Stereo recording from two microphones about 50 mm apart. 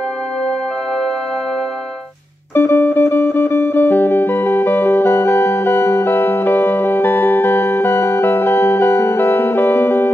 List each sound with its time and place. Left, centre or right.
2.5 s music: left